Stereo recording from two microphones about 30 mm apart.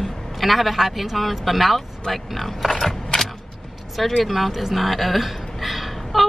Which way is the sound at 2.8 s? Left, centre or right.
Centre.